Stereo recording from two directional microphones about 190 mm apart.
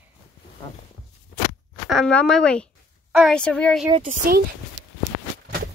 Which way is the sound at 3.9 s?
35° right (ahead or behind).